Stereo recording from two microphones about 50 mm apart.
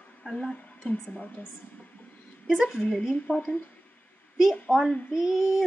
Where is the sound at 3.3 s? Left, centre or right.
Left.